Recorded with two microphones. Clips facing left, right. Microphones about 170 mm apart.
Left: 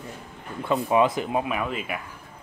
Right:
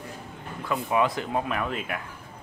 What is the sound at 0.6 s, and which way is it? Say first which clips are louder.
Speech: left 4 dB; 25° left (ahead or behind).